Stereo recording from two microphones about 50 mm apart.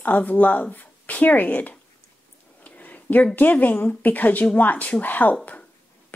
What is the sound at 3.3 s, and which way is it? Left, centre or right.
A woman's voice, left.